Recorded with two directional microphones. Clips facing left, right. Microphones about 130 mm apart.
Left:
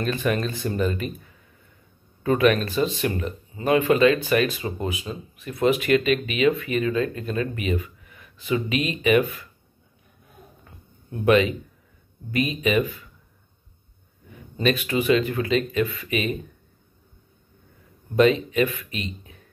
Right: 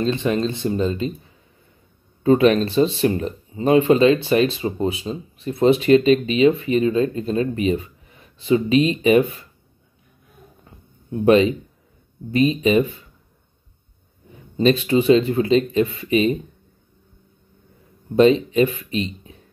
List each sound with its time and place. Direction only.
0.0 s speech: 25° right (ahead or behind)
10.6 s a sound: 20° right (ahead or behind)
11.2 s speech: 30° right (ahead or behind)
14.6 s speech: 30° right (ahead or behind)
18.1 s speech: 30° right (ahead or behind)